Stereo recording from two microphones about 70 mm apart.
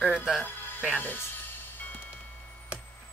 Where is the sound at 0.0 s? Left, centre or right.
Centre.